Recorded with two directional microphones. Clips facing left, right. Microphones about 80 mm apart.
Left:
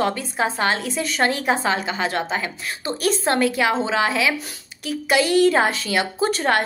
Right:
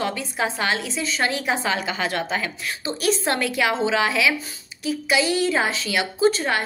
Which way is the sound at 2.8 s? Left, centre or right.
Left.